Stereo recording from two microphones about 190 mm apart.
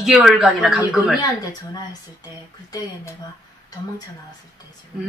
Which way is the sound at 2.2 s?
20° left (ahead or behind).